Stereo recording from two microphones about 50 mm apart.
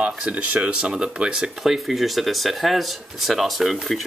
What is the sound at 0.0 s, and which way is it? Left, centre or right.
Speech, right.